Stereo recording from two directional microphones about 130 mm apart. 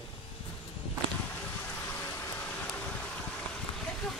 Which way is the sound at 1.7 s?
15° left (ahead or behind).